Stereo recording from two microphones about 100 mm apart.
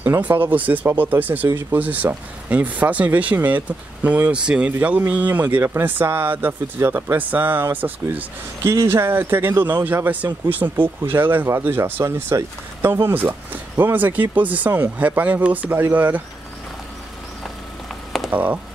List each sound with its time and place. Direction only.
0.0 s a man's voice: 20° right (ahead or behind)
18.3 s speech: 15° right (ahead or behind)